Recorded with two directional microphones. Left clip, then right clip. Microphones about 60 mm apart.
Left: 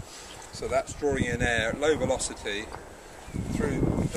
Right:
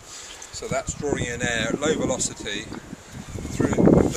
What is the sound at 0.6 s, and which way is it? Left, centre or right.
Speech, left.